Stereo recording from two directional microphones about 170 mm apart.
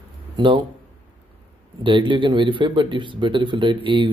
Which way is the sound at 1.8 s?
30° right (ahead or behind).